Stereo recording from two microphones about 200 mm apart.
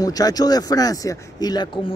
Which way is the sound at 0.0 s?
20° left (ahead or behind).